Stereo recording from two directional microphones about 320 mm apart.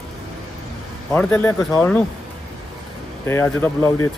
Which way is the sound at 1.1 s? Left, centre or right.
Centre.